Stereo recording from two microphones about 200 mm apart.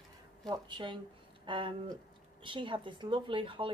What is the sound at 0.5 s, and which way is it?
A woman's voice, 25° right (ahead or behind).